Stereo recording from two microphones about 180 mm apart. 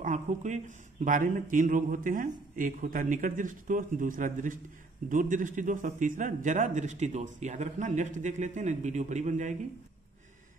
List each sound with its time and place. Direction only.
0.0 s a man's voice: 40° right (ahead or behind)